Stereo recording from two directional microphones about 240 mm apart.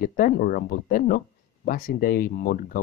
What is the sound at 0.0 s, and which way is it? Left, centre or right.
Speech, left.